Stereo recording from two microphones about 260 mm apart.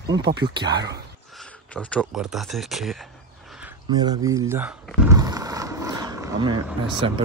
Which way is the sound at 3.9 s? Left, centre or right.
Centre.